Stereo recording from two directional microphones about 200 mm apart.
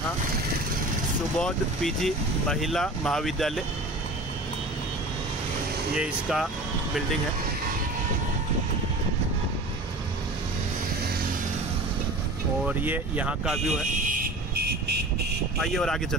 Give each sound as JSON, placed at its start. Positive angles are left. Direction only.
{"t": 1.4, "sound": "speech", "side_deg": 0}
{"t": 5.9, "sound": "speech", "side_deg": 0}
{"t": 12.6, "sound": "speech", "side_deg": -10}
{"t": 13.9, "sound": "vehicle", "side_deg": -45}
{"t": 15.6, "sound": "speech", "side_deg": 0}